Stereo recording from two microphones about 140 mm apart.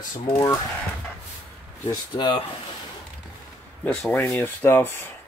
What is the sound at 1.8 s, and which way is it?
Speech, 30° left (ahead or behind).